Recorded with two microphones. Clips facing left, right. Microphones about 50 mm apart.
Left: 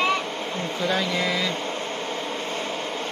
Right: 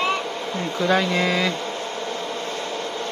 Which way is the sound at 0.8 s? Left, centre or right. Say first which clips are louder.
Right 5 dB; right.